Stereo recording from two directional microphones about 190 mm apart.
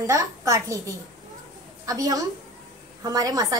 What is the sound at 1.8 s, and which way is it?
A woman's voice, 20° right (ahead or behind).